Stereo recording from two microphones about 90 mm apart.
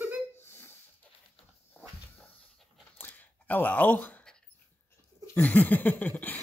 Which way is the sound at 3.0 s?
20° left (ahead or behind).